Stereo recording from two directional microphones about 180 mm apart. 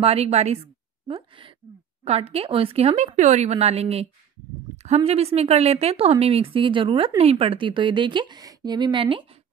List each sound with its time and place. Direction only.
0.0 s a woman's voice: 35° right (ahead or behind)
1.0 s a sound: 30° right (ahead or behind)
2.0 s a woman's voice: 35° right (ahead or behind)